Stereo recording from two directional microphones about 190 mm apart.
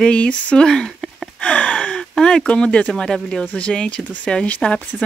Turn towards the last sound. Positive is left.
turn(degrees=5)  # may be behind; listen again after turning